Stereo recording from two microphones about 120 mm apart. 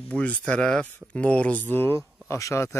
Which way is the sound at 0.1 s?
10° left (ahead or behind).